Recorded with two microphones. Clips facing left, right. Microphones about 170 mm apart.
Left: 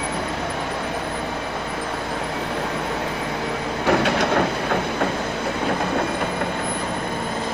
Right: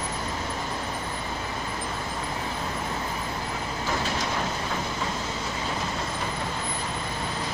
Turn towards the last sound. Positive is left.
turn(degrees=60)  # may be behind; listen again after turning